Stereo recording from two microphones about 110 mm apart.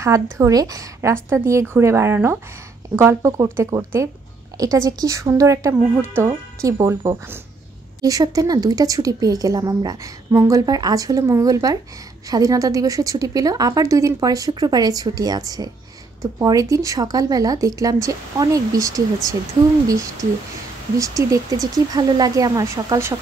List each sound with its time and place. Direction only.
0.0 s a woman's voice: 25° right (ahead or behind)
8.0 s a woman's voice: 35° right (ahead or behind)